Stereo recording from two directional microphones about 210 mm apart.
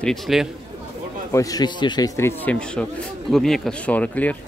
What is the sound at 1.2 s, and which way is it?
A man's voice, 15° left (ahead or behind).